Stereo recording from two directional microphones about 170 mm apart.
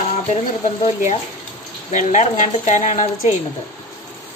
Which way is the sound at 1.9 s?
45° left (ahead or behind).